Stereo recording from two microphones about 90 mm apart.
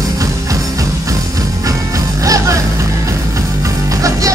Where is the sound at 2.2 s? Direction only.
35° right (ahead or behind).